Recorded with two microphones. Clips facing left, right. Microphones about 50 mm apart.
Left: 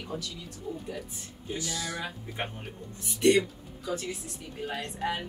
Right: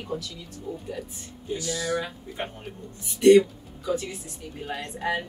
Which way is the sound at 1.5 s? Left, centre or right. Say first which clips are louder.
Right 4 dB; left.